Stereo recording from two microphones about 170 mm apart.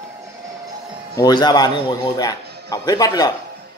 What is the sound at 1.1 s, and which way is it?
A man's voice, 25° left (ahead or behind).